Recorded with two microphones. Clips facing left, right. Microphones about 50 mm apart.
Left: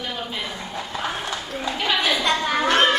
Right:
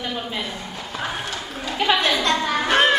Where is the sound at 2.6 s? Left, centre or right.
Centre.